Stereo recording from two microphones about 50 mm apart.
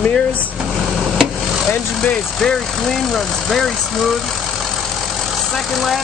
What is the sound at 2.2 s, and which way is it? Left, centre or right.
Speech, centre.